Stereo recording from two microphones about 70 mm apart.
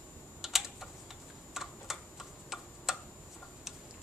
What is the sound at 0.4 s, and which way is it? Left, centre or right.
Typing, centre.